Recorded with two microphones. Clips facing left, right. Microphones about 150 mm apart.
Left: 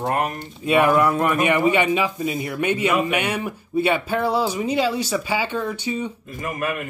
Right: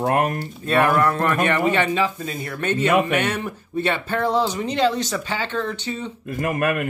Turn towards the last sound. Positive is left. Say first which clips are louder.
# right 4 dB
turn(degrees=-60)  # may be behind; listen again after turning